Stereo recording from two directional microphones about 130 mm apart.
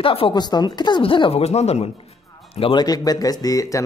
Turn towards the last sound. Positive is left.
turn(degrees=25)  # may be behind; listen again after turning